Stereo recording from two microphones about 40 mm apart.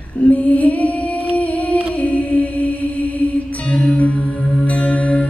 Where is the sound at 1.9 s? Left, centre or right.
Left.